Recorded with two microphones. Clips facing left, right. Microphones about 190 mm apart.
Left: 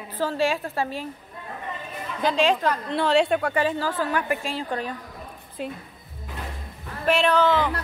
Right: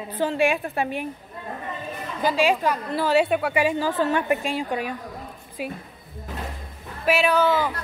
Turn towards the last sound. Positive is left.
turn(degrees=-10)  # may be behind; listen again after turning